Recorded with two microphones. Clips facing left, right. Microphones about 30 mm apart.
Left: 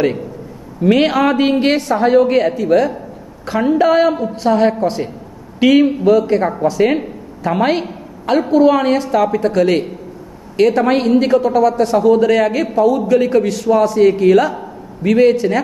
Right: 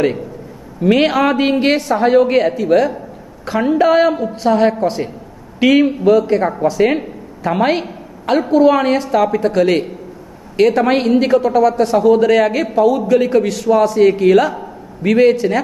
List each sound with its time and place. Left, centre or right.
0.8 s a woman's voice: centre
2.1 s a woman's voice: centre
2.4 s a woman's voice: centre
15.3 s a woman's voice: centre